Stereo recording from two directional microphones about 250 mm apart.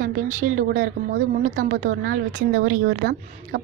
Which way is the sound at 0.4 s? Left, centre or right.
Right.